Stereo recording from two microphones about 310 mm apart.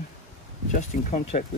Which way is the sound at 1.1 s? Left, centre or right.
Left.